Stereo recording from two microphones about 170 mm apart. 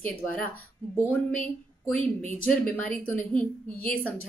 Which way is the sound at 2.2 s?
50° left (ahead or behind).